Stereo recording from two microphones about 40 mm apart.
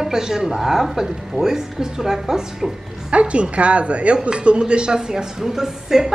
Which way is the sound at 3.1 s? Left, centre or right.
Right.